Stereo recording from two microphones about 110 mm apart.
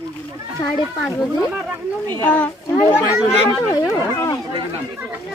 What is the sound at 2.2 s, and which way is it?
Speech, 15° left (ahead or behind).